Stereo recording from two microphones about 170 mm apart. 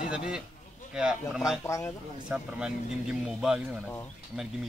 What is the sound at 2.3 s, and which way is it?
Speech, 5° right (ahead or behind).